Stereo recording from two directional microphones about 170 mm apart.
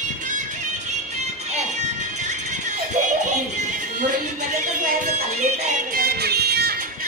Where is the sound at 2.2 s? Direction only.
45° right (ahead or behind).